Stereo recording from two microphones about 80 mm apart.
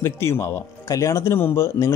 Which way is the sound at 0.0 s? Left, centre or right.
Left.